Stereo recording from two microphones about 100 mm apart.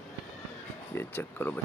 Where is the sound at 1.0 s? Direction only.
20° left (ahead or behind).